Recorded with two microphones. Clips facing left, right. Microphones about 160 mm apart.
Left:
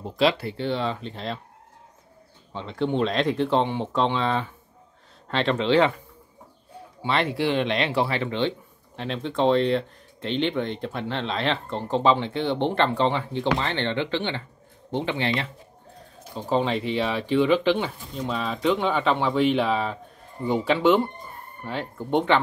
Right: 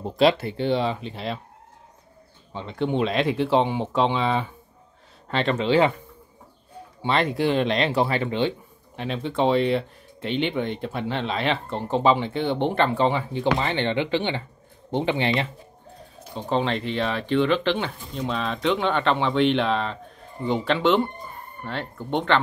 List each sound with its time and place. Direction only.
0.3 s speech: 20° right (ahead or behind)
2.5 s speech: 5° right (ahead or behind)
7.0 s speech: 35° right (ahead or behind)
8.3 s speech: 10° right (ahead or behind)
16.3 s speech: 5° left (ahead or behind)